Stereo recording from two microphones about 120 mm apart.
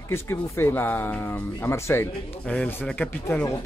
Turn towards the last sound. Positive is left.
turn(degrees=10)  # may be behind; listen again after turning